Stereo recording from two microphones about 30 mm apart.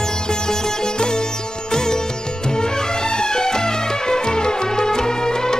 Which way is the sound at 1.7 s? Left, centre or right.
Left.